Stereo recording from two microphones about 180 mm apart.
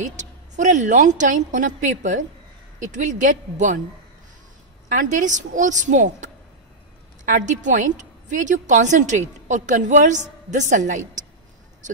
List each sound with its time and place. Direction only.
0.0 s a woman's voice: 45° right (ahead or behind)
4.8 s a woman's voice: 45° right (ahead or behind)